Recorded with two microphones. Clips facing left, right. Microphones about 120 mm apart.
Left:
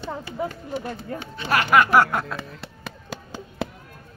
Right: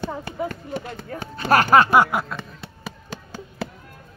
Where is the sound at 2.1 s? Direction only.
Centre (ahead or behind).